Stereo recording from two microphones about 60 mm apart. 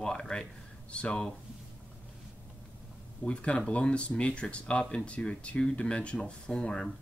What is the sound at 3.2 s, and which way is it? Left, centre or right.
Speech, centre.